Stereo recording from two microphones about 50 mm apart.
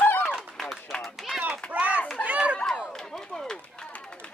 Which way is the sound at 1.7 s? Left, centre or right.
Right.